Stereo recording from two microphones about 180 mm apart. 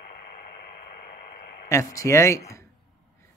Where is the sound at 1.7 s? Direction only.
15° left (ahead or behind).